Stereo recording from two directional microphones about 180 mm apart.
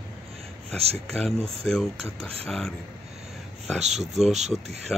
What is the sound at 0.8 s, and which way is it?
Speech, 35° right (ahead or behind).